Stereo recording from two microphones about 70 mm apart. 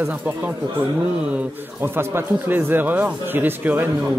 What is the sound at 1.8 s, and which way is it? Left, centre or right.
A man's voice, right.